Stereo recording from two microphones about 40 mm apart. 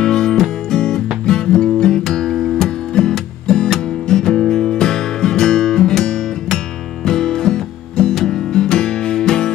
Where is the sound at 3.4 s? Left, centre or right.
Centre.